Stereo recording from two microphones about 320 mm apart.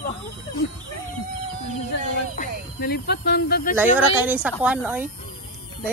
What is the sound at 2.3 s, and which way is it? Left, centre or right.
Speech, left.